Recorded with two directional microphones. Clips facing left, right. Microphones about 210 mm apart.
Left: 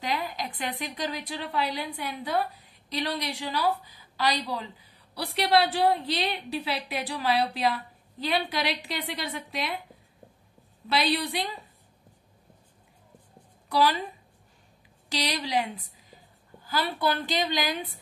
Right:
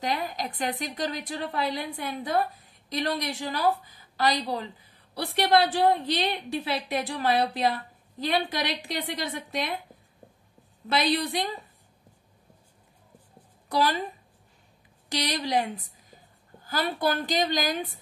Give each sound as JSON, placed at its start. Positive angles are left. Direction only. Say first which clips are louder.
{"t": 0.0, "sound": "a woman's voice", "louder": "right 1 dB", "side_deg": -40}
{"t": 10.9, "sound": "a woman's voice", "louder": "right 1 dB", "side_deg": -45}
{"t": 13.7, "sound": "a woman's voice", "louder": "left 1 dB", "side_deg": -45}
{"t": 15.2, "sound": "a woman's voice", "louder": "right 2 dB", "side_deg": -50}
{"t": 16.6, "sound": "a woman's voice", "louder": "right 1 dB", "side_deg": -45}